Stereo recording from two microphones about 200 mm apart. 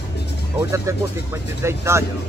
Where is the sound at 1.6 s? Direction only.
15° right (ahead or behind).